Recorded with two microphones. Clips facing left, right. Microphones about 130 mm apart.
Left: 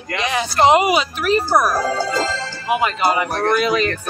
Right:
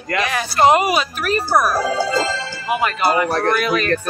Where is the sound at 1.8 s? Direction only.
10° right (ahead or behind).